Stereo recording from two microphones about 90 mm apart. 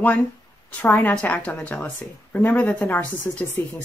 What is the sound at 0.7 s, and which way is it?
A woman's voice, 20° left (ahead or behind).